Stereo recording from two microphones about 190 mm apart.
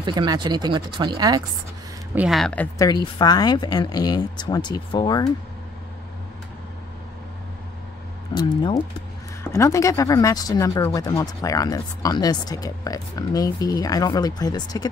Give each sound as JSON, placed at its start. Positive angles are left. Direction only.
{"t": 0.0, "sound": "speech", "side_deg": -25}
{"t": 2.1, "sound": "speech", "side_deg": 0}
{"t": 2.8, "sound": "speech", "side_deg": 20}
{"t": 8.4, "sound": "speech", "side_deg": 20}